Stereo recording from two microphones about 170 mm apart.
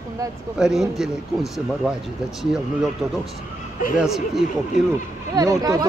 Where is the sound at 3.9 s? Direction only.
Centre (ahead or behind).